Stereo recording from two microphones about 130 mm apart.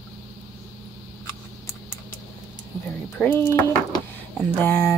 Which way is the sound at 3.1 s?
15° left (ahead or behind).